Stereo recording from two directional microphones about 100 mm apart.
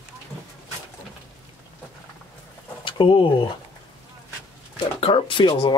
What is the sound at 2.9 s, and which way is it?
Speech, 55° left (ahead or behind).